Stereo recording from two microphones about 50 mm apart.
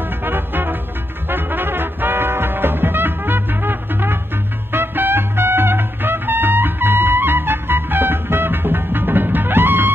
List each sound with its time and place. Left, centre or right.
0.2 s music: right